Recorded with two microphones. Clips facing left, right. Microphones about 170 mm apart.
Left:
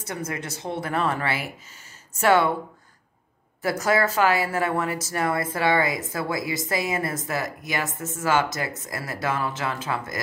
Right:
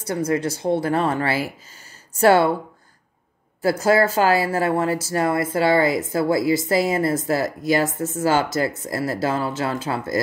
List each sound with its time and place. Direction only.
0.0 s speech: 30° right (ahead or behind)
3.6 s speech: 30° right (ahead or behind)